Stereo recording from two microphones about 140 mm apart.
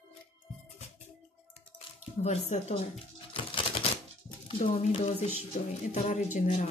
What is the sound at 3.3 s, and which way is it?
Typewriter, 40° left (ahead or behind).